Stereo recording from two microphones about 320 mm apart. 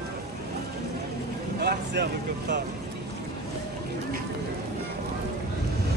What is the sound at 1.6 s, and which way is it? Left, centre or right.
Speech, right.